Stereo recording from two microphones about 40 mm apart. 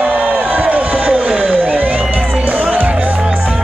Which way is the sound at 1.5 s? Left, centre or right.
Right.